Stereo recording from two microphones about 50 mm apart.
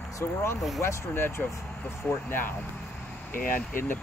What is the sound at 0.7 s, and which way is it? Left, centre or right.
Speech, left.